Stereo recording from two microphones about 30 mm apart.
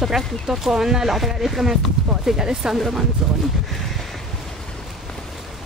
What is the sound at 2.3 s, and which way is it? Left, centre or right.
Speech, centre.